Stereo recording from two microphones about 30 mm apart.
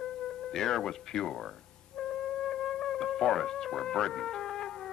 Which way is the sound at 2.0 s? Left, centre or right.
Left.